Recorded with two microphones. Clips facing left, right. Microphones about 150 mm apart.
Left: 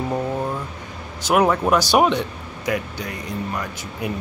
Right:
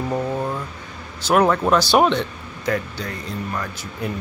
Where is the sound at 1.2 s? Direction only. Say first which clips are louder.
Right 1 dB; 15° left (ahead or behind).